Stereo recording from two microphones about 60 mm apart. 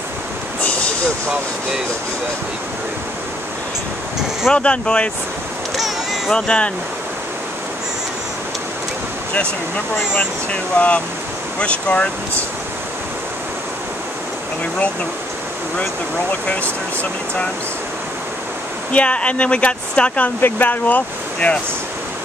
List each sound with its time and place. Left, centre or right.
0.6 s vehicle: left
4.5 s speech: centre
5.8 s a sound: centre
6.3 s speech: centre
10.5 s speech: left
18.9 s speech: left
20.4 s speech: left